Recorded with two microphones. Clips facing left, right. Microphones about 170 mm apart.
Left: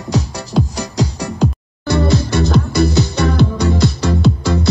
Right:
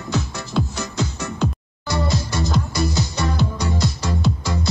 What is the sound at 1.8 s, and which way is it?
Music, 65° left (ahead or behind).